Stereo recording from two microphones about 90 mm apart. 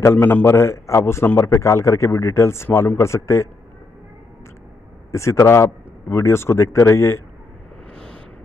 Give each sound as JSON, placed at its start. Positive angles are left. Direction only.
{"t": 0.0, "sound": "a man's voice", "side_deg": 25}
{"t": 5.1, "sound": "a man's voice", "side_deg": 35}